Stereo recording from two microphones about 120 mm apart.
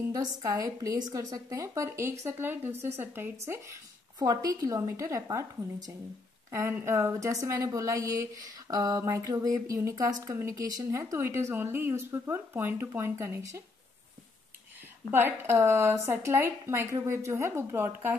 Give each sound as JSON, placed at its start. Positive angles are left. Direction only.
{"t": 0.1, "sound": "a woman's voice", "side_deg": -30}
{"t": 6.5, "sound": "a woman's voice", "side_deg": -25}
{"t": 15.0, "sound": "a woman's voice", "side_deg": -20}